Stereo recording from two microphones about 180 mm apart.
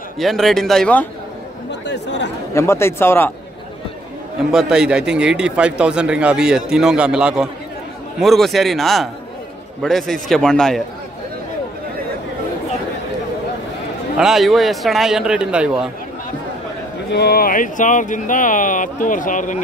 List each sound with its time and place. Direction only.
0.2 s speech: centre (ahead or behind)
1.7 s speech: 75° left (ahead or behind)
2.5 s speech: 15° left (ahead or behind)
4.5 s speech: 5° right (ahead or behind)
14.1 s speech: centre (ahead or behind)
17.1 s speech: 60° left (ahead or behind); by 19.6 s 45° left (ahead or behind)